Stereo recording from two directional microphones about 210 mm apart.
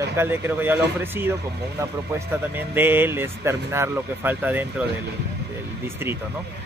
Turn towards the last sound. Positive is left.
turn(degrees=-10)  # may be behind; listen again after turning